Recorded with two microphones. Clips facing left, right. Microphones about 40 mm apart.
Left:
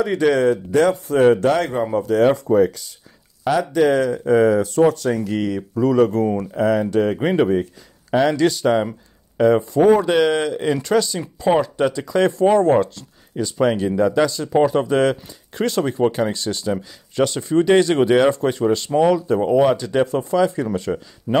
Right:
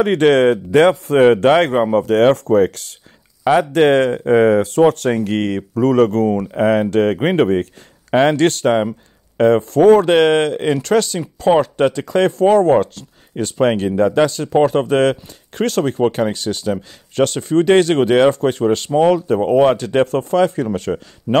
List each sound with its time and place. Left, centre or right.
0.0 s a man's voice: right
3.5 s a man's voice: right
6.5 s speech: right
7.2 s speech: right
9.8 s speech: right
10.0 s speech: right
12.4 s speech: right
13.9 s speech: right
20.9 s speech: centre